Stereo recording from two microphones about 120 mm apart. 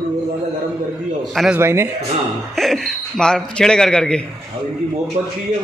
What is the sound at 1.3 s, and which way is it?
Speech, centre (ahead or behind).